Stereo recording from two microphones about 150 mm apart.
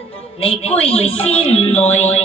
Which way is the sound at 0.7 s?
40° left (ahead or behind).